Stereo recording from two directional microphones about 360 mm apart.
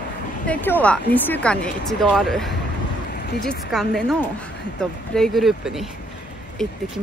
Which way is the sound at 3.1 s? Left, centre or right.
Left.